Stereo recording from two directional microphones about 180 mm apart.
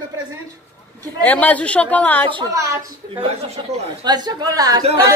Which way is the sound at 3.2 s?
35° right (ahead or behind).